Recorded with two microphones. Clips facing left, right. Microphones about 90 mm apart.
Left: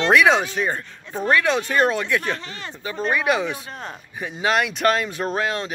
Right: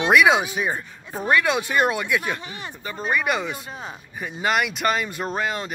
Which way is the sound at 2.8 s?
Centre (ahead or behind).